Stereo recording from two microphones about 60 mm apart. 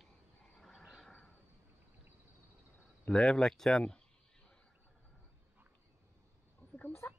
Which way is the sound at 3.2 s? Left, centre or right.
Centre.